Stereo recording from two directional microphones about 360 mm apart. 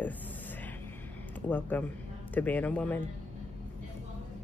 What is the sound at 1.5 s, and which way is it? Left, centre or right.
Speech, centre.